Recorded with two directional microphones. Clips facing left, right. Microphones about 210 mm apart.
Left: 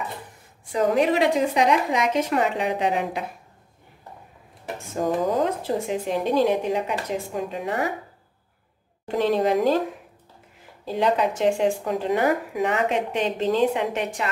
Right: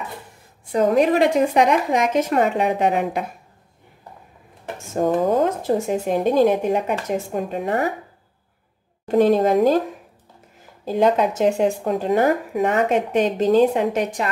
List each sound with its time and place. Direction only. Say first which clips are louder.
0.7 s speech: right 4 dB; 45° right (ahead or behind)
4.9 s speech: right 4 dB; 45° right (ahead or behind)
9.0 s speech: right 5 dB; 45° right (ahead or behind)
10.9 s speech: right 4 dB; 45° right (ahead or behind)